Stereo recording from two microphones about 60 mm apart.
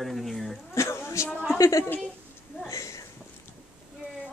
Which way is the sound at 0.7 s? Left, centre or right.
Left.